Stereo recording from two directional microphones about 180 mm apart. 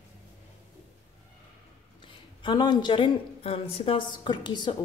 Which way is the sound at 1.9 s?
25° left (ahead or behind).